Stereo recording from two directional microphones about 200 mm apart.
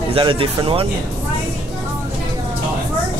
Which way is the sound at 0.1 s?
25° right (ahead or behind).